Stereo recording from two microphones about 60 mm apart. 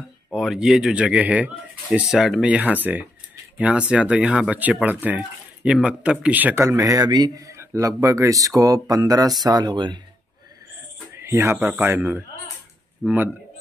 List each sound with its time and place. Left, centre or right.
0.3 s speech: centre; by 2.0 s right
2.0 s speech: centre
2.4 s speech: right
5.6 s speech: centre
6.5 s speech: right
6.8 s speech: right
7.5 s speech: right
11.1 s a sound: right
11.5 s speech: right
13.0 s speech: right